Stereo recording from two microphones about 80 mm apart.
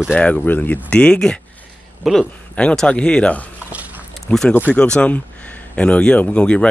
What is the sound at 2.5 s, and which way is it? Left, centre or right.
Speech, centre.